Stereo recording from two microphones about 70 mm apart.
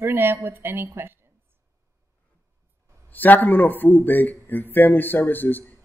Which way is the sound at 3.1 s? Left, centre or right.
Left.